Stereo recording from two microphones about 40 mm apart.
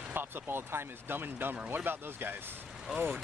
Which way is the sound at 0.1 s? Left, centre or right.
Right.